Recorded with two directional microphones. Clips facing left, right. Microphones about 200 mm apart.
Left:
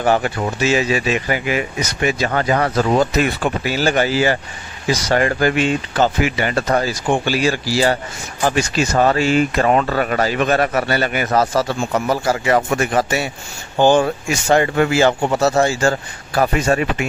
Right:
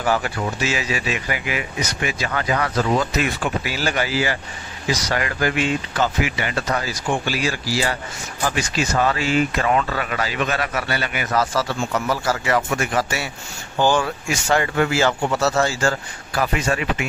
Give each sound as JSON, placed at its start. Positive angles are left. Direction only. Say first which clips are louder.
{"t": 0.0, "sound": "speech", "louder": "left 4 dB", "side_deg": 25}
{"t": 0.7, "sound": "speech", "louder": "left 7 dB", "side_deg": 35}
{"t": 6.2, "sound": "speech", "louder": "left 5 dB", "side_deg": 45}
{"t": 6.8, "sound": "speech", "louder": "left 5 dB", "side_deg": 30}
{"t": 11.3, "sound": "speech", "louder": "left 3 dB", "side_deg": 25}
{"t": 16.3, "sound": "speech", "louder": "left 5 dB", "side_deg": 40}